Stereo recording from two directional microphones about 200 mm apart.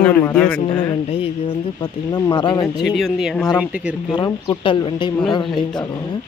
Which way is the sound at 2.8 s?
Centre (ahead or behind).